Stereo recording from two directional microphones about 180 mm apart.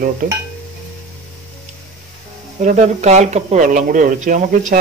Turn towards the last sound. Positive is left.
turn(degrees=-45)  # may be behind; listen again after turning